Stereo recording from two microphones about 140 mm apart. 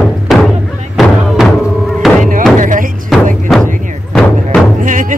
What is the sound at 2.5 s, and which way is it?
Music, 70° right (ahead or behind).